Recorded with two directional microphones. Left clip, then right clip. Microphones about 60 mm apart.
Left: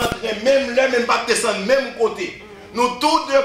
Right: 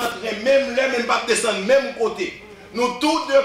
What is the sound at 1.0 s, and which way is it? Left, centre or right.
A man's voice, left.